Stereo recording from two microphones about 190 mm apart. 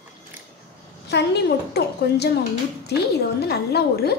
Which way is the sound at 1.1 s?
60° left (ahead or behind).